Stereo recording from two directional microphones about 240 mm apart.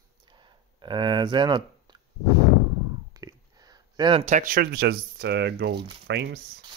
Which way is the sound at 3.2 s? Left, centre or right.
Centre.